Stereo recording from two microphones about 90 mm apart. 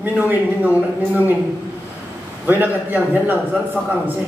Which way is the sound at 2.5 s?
20° right (ahead or behind).